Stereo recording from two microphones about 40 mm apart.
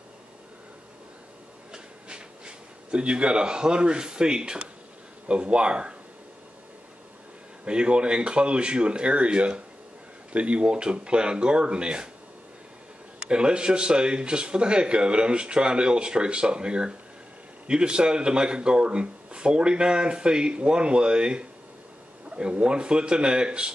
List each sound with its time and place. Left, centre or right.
1.7 s a sound: right
5.3 s speech: right
7.6 s speech: right
13.2 s speech: right